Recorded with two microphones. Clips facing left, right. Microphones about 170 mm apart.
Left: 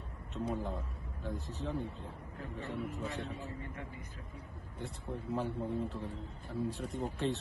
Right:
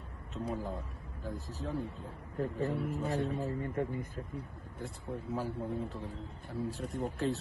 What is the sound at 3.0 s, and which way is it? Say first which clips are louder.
Speech: right 7 dB; 60° right (ahead or behind).